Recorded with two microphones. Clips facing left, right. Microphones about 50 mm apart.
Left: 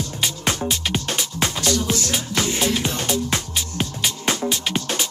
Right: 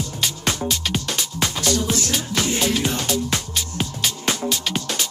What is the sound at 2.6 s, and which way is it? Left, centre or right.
Music, left.